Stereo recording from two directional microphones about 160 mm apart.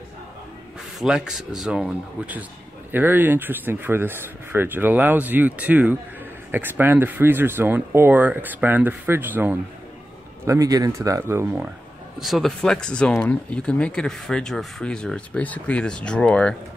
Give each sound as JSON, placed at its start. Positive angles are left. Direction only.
{"t": 0.9, "sound": "speech", "side_deg": -5}
{"t": 12.2, "sound": "speech", "side_deg": 0}